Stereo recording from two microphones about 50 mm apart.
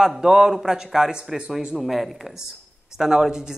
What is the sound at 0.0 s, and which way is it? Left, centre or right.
Speech, centre.